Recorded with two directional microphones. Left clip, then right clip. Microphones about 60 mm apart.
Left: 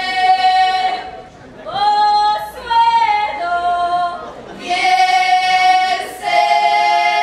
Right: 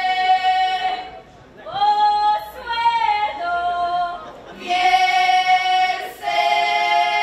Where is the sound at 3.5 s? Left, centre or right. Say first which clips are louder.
Left 6 dB; centre.